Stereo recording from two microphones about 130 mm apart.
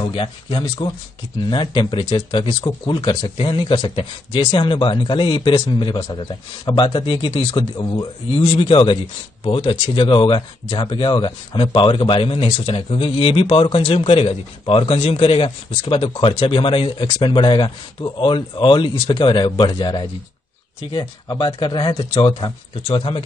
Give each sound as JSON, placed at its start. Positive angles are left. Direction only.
{"t": 0.1, "sound": "speech", "side_deg": 40}
{"t": 2.6, "sound": "speech", "side_deg": 30}
{"t": 3.3, "sound": "speech", "side_deg": 45}